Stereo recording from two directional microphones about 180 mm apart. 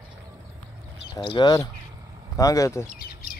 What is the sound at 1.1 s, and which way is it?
Speech, 25° left (ahead or behind).